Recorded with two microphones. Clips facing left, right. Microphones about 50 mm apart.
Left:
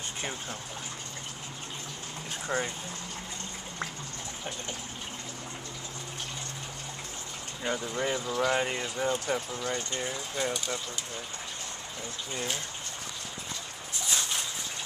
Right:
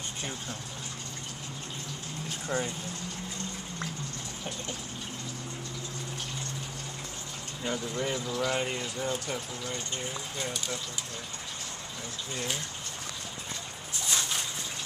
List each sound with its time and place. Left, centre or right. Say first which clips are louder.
0.2 s speech: left 2 dB; centre
2.5 s speech: left 1 dB; left
7.6 s speech: left 1 dB; centre